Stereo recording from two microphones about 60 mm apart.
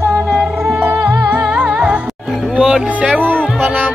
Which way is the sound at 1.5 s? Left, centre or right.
Centre.